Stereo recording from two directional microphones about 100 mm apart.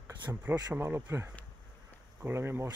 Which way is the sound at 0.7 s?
25° right (ahead or behind).